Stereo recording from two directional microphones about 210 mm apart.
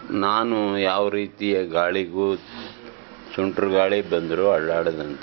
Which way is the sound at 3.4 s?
25° right (ahead or behind).